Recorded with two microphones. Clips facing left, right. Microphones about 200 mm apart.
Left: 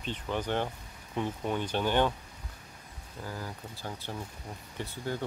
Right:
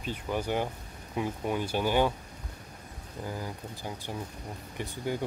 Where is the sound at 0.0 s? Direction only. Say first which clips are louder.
Right 1 dB; 10° right (ahead or behind).